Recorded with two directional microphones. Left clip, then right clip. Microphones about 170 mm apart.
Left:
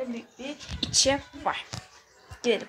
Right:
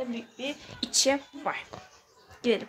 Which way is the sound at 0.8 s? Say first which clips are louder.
Left 2 dB; 20° right (ahead or behind).